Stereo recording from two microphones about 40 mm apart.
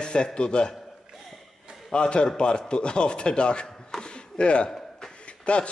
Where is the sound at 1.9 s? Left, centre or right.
Left.